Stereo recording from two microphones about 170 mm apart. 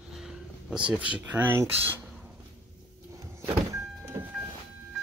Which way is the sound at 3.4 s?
15° right (ahead or behind).